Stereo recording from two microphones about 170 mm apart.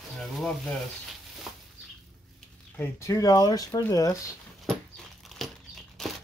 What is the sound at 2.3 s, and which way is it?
Speech, 15° left (ahead or behind).